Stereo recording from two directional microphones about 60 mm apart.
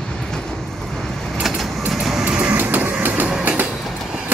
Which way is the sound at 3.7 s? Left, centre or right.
Centre.